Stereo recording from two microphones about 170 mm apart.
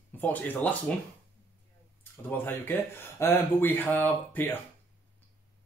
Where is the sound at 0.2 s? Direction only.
10° left (ahead or behind).